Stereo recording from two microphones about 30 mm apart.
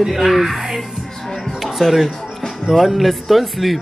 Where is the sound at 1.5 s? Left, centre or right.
Centre.